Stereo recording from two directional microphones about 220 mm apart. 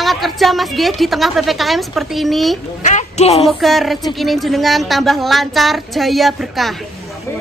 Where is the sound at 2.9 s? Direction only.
30° left (ahead or behind).